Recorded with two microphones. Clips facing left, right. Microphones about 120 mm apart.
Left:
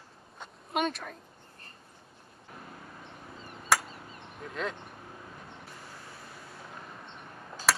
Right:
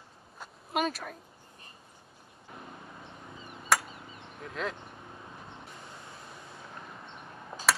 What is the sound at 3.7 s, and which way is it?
Chop, centre (ahead or behind).